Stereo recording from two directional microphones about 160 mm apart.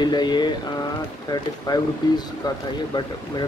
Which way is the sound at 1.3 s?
25° left (ahead or behind).